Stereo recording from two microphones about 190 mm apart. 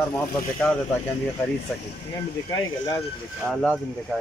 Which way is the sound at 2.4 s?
20° left (ahead or behind).